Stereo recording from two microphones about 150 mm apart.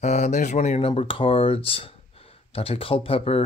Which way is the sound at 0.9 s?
35° left (ahead or behind).